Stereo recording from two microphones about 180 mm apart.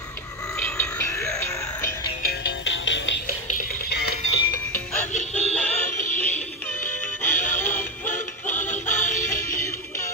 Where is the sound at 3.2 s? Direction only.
50° left (ahead or behind).